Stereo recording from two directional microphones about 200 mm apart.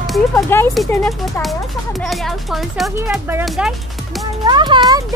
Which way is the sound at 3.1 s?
10° right (ahead or behind).